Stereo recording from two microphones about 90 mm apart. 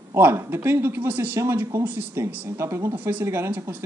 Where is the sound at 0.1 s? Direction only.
30° right (ahead or behind).